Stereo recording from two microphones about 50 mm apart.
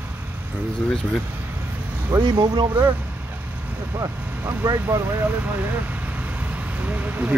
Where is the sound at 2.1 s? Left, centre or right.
Right.